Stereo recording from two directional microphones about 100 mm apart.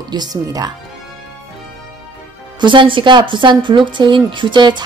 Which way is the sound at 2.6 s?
55° right (ahead or behind).